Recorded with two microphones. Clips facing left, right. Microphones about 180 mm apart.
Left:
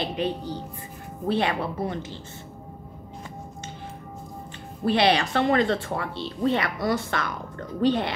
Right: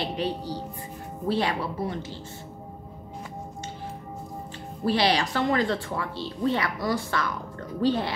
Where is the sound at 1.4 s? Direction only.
55° left (ahead or behind).